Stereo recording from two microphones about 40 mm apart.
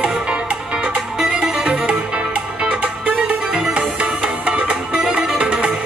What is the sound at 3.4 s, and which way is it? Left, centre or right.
Music, centre.